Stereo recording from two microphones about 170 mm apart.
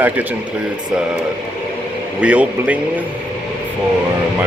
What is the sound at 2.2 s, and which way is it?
Speech, 10° right (ahead or behind).